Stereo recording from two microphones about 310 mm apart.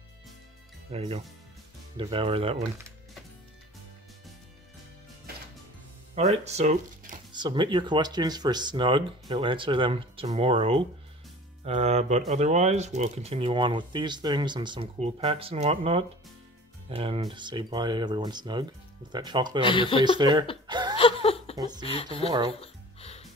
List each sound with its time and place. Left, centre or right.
0.9 s speech: centre
6.1 s speech: right
19.6 s speech: centre
20.2 s speech: centre
20.6 s chuckle: centre
20.9 s a sound: centre
21.5 s speech: centre
21.8 s speech: centre
22.3 s speech: centre
22.6 s music: centre